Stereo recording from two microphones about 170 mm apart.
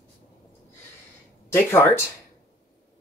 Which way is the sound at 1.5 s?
15° left (ahead or behind).